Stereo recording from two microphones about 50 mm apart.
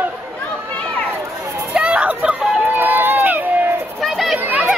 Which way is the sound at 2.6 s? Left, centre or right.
Right.